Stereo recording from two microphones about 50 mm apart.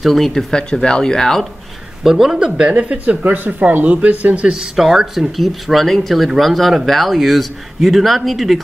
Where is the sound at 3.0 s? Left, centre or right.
Right.